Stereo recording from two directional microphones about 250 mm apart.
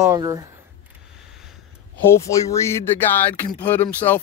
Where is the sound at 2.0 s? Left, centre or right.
Centre.